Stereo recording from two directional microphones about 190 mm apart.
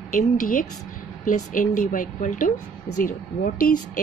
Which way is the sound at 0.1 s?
45° left (ahead or behind).